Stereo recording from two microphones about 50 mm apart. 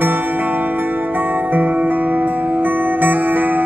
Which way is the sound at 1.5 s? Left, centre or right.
Right.